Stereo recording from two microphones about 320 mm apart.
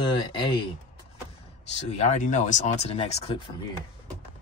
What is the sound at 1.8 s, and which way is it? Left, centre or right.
Speech, left.